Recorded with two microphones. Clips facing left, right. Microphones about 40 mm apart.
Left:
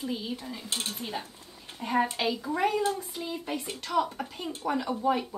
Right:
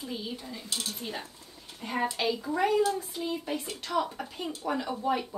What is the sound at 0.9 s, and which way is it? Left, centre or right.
Dishes, centre.